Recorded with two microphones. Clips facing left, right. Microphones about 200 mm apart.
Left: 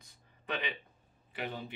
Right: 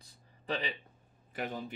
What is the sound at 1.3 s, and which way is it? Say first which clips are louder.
Speech: right 2 dB; 45° right (ahead or behind).